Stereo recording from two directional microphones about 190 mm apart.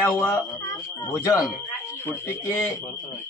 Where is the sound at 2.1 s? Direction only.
15° left (ahead or behind).